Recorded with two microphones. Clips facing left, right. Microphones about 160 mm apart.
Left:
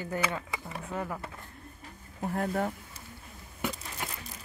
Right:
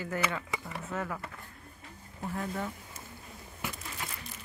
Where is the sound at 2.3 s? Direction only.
50° left (ahead or behind).